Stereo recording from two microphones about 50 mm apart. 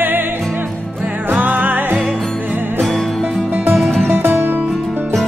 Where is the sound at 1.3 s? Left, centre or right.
Right.